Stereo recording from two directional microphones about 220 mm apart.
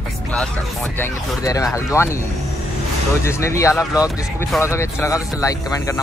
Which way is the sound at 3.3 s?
10° left (ahead or behind).